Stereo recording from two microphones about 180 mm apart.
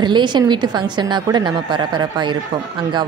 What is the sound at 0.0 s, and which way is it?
Speech, 25° right (ahead or behind).